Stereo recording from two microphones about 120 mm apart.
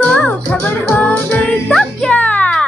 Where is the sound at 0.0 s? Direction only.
10° left (ahead or behind).